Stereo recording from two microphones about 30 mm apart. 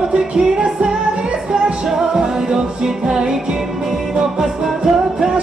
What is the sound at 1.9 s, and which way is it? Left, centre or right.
Music, right.